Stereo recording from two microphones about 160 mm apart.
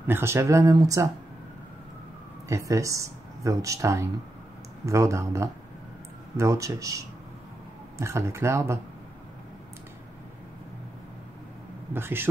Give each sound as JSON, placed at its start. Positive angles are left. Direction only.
{"t": 0.0, "sound": "speech", "side_deg": -15}
{"t": 2.4, "sound": "speech", "side_deg": -20}
{"t": 11.9, "sound": "speech", "side_deg": -15}